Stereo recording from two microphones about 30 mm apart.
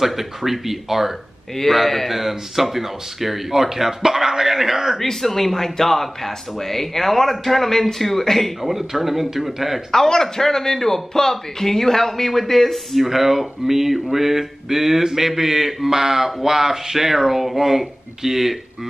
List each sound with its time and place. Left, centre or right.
0.0 s a man's voice: centre
5.2 s speech: centre
8.6 s speech: centre
9.8 s a man's voice: centre
12.9 s speech: centre